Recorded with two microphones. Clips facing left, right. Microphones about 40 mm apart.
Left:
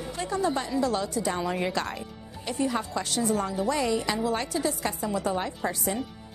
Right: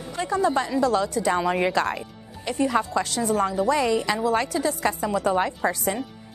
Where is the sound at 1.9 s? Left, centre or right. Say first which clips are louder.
Right 2 dB; centre.